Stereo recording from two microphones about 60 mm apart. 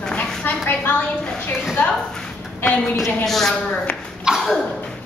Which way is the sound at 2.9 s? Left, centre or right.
Centre.